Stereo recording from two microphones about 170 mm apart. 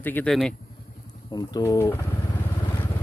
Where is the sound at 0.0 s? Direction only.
10° left (ahead or behind).